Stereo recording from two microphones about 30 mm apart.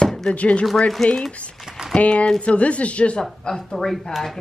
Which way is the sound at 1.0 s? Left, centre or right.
Centre.